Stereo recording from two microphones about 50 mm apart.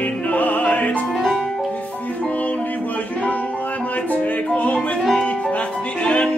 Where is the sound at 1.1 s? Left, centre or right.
Centre.